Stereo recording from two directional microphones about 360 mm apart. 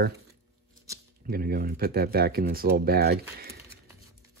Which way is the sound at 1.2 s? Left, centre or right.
Right.